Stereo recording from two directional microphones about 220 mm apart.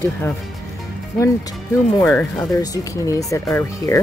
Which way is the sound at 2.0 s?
10° left (ahead or behind).